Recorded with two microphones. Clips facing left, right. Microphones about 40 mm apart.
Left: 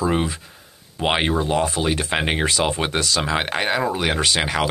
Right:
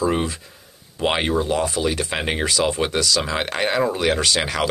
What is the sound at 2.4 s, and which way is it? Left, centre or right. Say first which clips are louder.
Speech: even; left.